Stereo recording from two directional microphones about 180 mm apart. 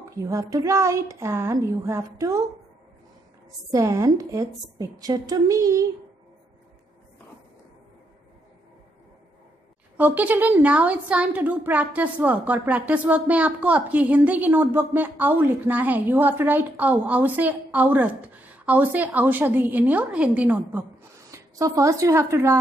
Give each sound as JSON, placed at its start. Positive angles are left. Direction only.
{"t": 0.0, "sound": "a woman's voice", "side_deg": -15}
{"t": 3.7, "sound": "a woman's voice", "side_deg": -15}
{"t": 9.9, "sound": "a woman's voice", "side_deg": -10}